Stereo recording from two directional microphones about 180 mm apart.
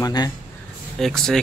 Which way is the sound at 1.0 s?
Centre (ahead or behind).